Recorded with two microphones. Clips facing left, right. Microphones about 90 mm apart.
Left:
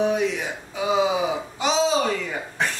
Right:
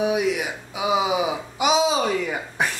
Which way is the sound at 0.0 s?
10° right (ahead or behind).